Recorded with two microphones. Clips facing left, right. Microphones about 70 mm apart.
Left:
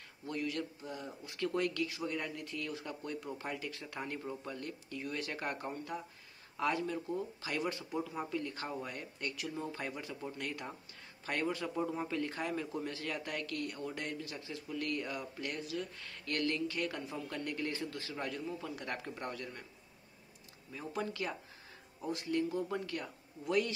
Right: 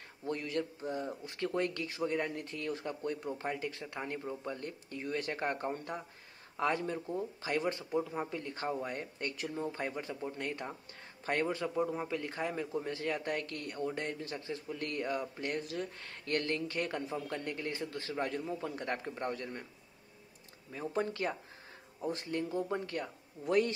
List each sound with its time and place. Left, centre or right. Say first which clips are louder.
0.3 s a man's voice: right 2 dB; right
4.6 s speech: right 1 dB; right
9.6 s a man's voice: right 3 dB; right
11.4 s a man's voice: right 2 dB; centre
20.7 s speech: right 4 dB; right